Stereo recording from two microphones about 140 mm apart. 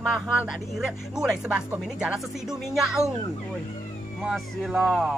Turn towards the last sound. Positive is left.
turn(degrees=-5)  # may be behind; listen again after turning